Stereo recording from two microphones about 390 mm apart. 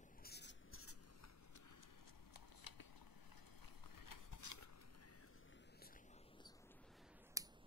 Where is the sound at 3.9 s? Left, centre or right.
Left.